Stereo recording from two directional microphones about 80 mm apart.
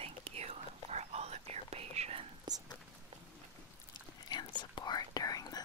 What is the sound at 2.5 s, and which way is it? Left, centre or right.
Whispering, right.